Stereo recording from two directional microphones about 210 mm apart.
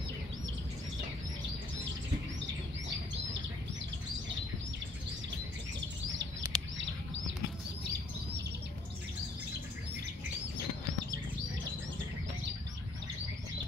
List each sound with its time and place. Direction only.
6.4 s bird: 15° right (ahead or behind)